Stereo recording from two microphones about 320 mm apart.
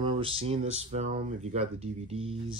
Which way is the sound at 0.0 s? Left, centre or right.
Centre.